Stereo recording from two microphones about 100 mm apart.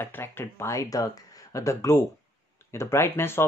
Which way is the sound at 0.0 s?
20° left (ahead or behind).